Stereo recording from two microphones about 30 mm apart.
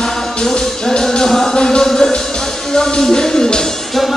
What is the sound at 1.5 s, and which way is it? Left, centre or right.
Music, left.